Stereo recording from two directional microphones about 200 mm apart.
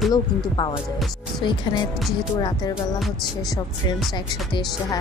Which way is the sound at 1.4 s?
25° left (ahead or behind).